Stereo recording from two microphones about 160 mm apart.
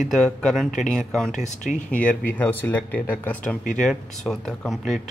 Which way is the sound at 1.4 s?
50° left (ahead or behind).